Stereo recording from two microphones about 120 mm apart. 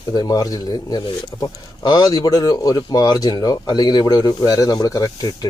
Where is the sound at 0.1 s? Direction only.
30° left (ahead or behind).